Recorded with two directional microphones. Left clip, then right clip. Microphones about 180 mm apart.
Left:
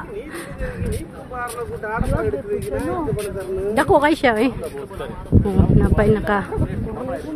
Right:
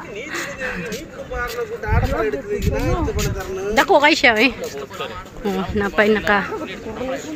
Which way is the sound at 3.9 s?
20° left (ahead or behind).